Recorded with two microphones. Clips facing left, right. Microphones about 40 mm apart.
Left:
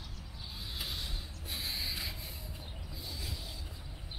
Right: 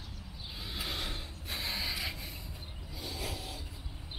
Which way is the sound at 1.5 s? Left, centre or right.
Centre.